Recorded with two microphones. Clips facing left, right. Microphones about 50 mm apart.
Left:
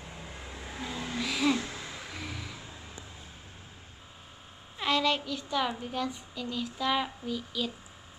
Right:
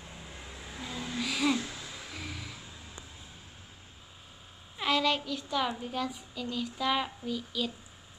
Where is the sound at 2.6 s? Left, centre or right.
Left.